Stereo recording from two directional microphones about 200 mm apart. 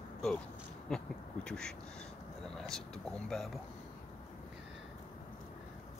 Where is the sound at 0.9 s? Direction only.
5° left (ahead or behind).